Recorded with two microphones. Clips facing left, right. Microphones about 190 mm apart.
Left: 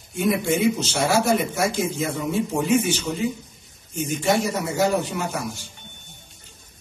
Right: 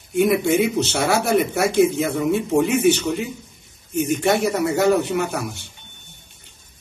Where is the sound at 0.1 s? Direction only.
65° right (ahead or behind).